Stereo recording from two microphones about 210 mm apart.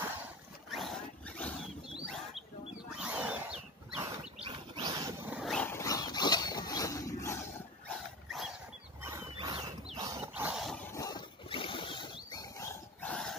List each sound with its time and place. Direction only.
0.7 s wild animals: centre (ahead or behind)
4.4 s wild animals: 25° right (ahead or behind)
5.2 s dog: 5° right (ahead or behind); by 7.3 s 15° left (ahead or behind)
8.3 s wild animals: centre (ahead or behind)
9.0 s wild animals: 15° right (ahead or behind)
10.3 s a sound: 5° right (ahead or behind)
10.9 s a sound: 15° left (ahead or behind)